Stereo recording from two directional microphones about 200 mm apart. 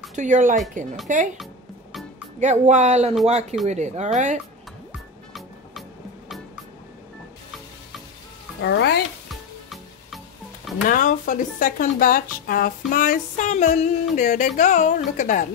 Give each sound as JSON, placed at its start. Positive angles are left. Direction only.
{"t": 0.1, "sound": "speech", "side_deg": -40}
{"t": 1.4, "sound": "music", "side_deg": 0}
{"t": 2.4, "sound": "speech", "side_deg": -35}
{"t": 5.3, "sound": "music", "side_deg": 0}
{"t": 8.6, "sound": "speech", "side_deg": 55}
{"t": 10.9, "sound": "speech", "side_deg": 45}